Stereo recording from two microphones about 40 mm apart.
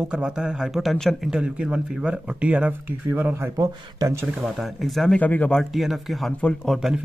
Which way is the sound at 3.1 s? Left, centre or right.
Right.